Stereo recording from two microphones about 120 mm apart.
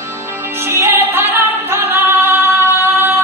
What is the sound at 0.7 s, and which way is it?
Music, 20° right (ahead or behind).